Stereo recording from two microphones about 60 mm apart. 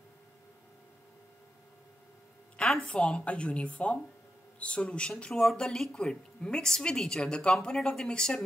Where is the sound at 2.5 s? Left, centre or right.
Centre.